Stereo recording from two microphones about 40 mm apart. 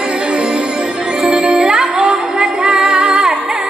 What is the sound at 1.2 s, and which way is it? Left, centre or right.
Music, right.